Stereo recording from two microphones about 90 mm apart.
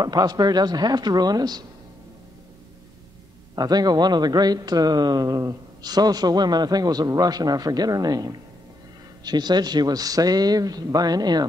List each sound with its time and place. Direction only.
0.0 s speech: 50° right (ahead or behind)
3.5 s speech: 45° right (ahead or behind)